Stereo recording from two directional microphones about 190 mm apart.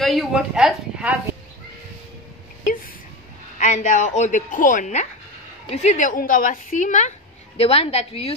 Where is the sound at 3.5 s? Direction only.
40° left (ahead or behind).